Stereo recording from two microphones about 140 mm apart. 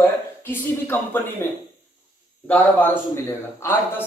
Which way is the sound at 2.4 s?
15° left (ahead or behind).